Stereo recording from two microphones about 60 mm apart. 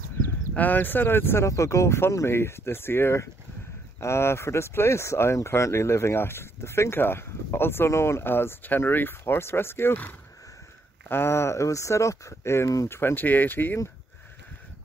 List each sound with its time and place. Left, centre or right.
0.6 s speech: left
1.5 s speech: left
11.1 s speech: left
12.8 s speech: left